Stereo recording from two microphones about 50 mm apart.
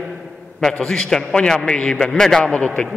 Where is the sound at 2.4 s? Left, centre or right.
Left.